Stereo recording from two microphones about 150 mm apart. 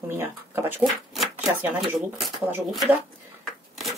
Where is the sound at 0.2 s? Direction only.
15° right (ahead or behind).